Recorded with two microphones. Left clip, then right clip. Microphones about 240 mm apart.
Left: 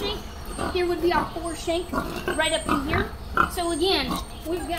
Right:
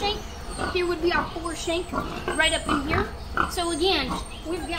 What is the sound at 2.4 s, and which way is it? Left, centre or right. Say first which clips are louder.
Speech: right 1 dB; right.